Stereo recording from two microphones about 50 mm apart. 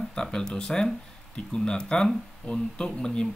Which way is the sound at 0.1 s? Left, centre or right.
Centre.